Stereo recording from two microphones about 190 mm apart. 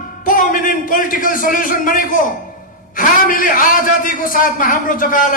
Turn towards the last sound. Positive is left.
turn(degrees=45)  # may be behind; listen again after turning